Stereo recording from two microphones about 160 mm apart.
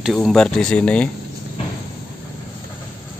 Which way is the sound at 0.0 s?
Centre (ahead or behind).